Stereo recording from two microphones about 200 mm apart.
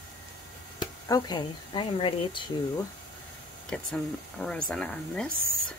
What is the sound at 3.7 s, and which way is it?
Speech, 5° left (ahead or behind).